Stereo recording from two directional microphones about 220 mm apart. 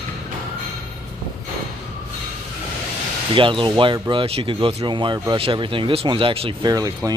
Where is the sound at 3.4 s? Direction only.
20° right (ahead or behind).